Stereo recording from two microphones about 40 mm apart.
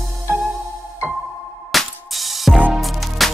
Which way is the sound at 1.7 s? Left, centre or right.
Centre.